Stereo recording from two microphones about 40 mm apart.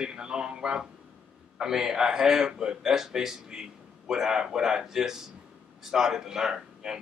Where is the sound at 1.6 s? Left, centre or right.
Centre.